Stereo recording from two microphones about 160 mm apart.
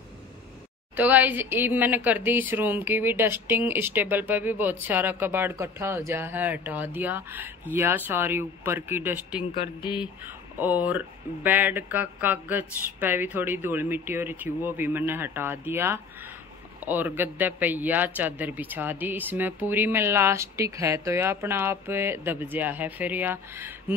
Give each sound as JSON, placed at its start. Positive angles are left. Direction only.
{"t": 0.9, "sound": "a woman's voice", "side_deg": -10}
{"t": 9.8, "sound": "speech", "side_deg": 30}
{"t": 10.6, "sound": "a woman's voice", "side_deg": -10}